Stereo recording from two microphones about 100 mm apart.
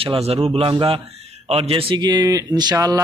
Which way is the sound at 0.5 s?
65° right (ahead or behind).